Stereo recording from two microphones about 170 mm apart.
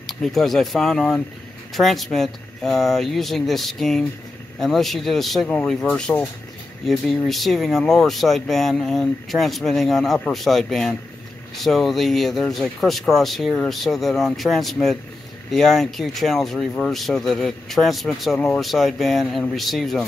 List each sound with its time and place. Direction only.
0.0 s speech: centre (ahead or behind)